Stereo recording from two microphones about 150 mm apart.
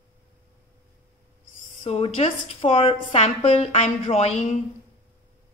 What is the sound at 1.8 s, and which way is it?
A woman's voice, 45° left (ahead or behind).